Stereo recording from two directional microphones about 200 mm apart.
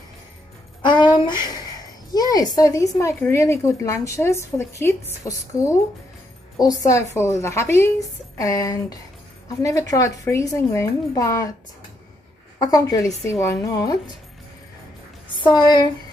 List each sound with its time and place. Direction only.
0.8 s a sound: 25° left (ahead or behind)
2.1 s a woman's voice: 20° left (ahead or behind)
12.5 s a woman's voice: 15° left (ahead or behind)
15.3 s speech: 20° left (ahead or behind)